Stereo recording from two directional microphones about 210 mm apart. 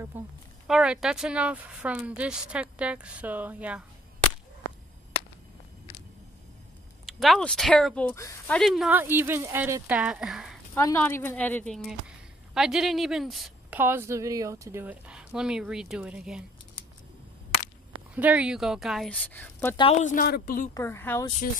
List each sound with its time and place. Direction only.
0.1 s a woman's voice: 10° right (ahead or behind)
7.1 s a woman's voice: centre (ahead or behind)
8.5 s speech: centre (ahead or behind)
10.8 s a woman's voice: 10° left (ahead or behind); by 16.4 s 5° right (ahead or behind)
18.1 s a woman's voice: 5° right (ahead or behind); by 19.7 s 10° left (ahead or behind)
19.8 s a woman's voice: 30° left (ahead or behind)
20.7 s speech: 10° left (ahead or behind)